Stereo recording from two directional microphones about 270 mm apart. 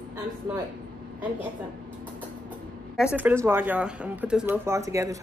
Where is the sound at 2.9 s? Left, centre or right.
Centre.